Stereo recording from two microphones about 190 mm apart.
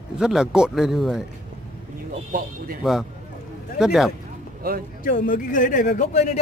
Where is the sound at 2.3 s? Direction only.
50° right (ahead or behind).